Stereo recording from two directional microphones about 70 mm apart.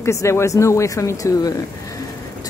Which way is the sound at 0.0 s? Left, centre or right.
Left.